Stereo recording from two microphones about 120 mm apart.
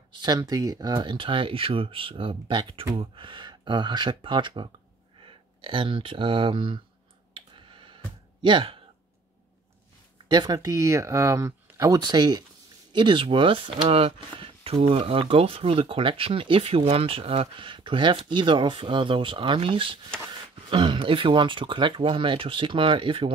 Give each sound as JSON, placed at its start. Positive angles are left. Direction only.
{"t": 0.1, "sound": "speech", "side_deg": -35}
{"t": 7.3, "sound": "clicking", "side_deg": -45}
{"t": 10.2, "sound": "speech", "side_deg": -35}